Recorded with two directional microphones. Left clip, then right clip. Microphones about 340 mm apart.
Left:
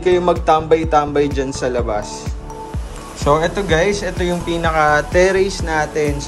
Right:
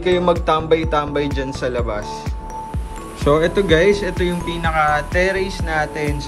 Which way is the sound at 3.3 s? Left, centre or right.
Centre.